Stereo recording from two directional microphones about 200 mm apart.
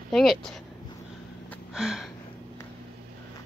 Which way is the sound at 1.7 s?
5° right (ahead or behind).